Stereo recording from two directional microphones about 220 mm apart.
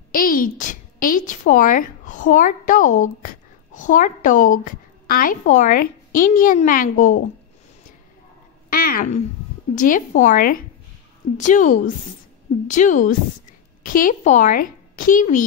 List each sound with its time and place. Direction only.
0.1 s a woman's voice: 40° left (ahead or behind)
8.6 s a woman's voice: 40° left (ahead or behind)